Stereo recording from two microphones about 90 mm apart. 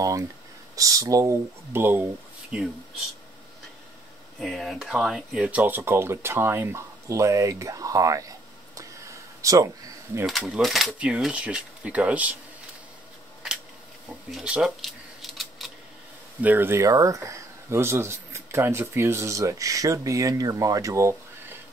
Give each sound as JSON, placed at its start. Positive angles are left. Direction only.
{"t": 0.7, "sound": "speech", "side_deg": -40}
{"t": 2.5, "sound": "speech", "side_deg": -10}
{"t": 4.4, "sound": "speech", "side_deg": 0}
{"t": 10.2, "sound": "speech", "side_deg": 0}
{"t": 10.9, "sound": "speech", "side_deg": -15}
{"t": 14.3, "sound": "camera", "side_deg": -5}
{"t": 16.3, "sound": "speech", "side_deg": -20}
{"t": 16.8, "sound": "speech", "side_deg": -40}